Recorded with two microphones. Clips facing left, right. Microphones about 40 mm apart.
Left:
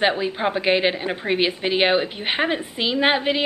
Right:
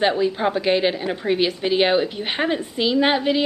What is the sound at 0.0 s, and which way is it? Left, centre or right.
A woman's voice, left.